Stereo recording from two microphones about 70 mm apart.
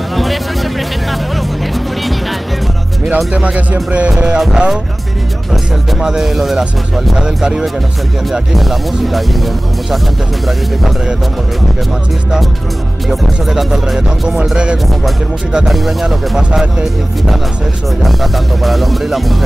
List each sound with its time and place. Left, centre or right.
0.1 s music: centre
3.3 s speech: centre
4.4 s speech: centre
13.1 s speech: centre